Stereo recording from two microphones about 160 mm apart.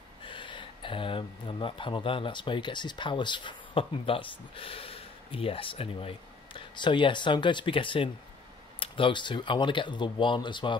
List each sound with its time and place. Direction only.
0.2 s speech: 30° left (ahead or behind)